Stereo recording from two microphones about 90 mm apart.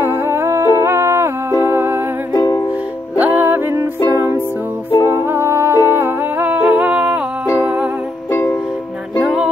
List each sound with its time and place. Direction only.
0.0 s humming: 25° right (ahead or behind)
1.6 s music: 25° right (ahead or behind)
2.3 s music: 50° left (ahead or behind)
3.2 s music: 20° right (ahead or behind)
8.3 s music: 30° left (ahead or behind)
9.2 s music: 10° right (ahead or behind)